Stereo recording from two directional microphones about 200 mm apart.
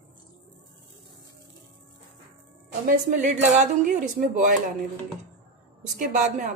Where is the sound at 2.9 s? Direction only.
40° right (ahead or behind).